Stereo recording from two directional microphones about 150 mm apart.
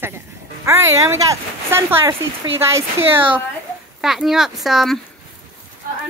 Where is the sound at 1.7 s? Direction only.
15° right (ahead or behind).